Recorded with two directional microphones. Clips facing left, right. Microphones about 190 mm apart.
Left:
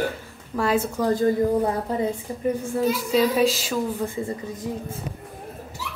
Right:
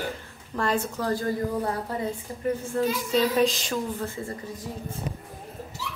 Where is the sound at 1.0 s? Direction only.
20° left (ahead or behind).